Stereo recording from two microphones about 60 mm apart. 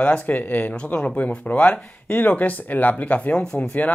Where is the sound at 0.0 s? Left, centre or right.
Left.